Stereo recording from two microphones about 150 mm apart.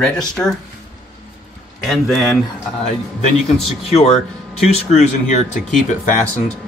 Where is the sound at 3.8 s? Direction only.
40° left (ahead or behind).